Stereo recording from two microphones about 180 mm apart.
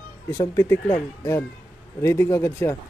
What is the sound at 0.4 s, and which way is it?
Speech, 15° left (ahead or behind).